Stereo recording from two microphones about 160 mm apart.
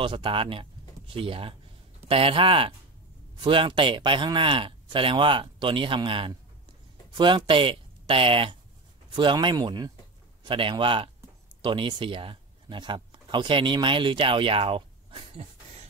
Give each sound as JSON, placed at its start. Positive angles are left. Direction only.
{"t": 0.0, "sound": "speech", "side_deg": -30}